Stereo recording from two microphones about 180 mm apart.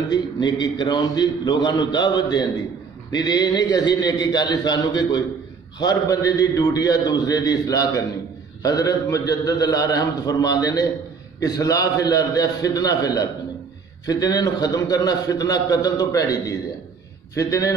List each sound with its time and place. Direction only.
0.1 s a man's voice: 25° left (ahead or behind)